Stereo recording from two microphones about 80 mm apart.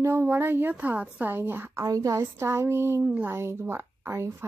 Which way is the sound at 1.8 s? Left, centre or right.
Right.